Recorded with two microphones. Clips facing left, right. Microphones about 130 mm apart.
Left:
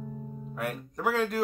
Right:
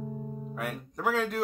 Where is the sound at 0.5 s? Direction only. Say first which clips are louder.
Left 3 dB; centre (ahead or behind).